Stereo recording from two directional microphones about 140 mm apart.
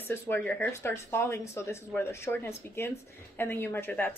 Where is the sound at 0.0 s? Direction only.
15° left (ahead or behind).